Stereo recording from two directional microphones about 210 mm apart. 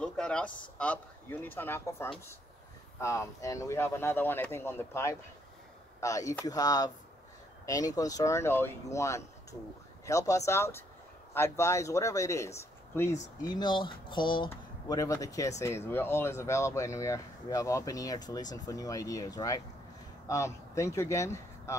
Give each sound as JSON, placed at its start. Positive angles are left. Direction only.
{"t": 0.0, "sound": "speech", "side_deg": 5}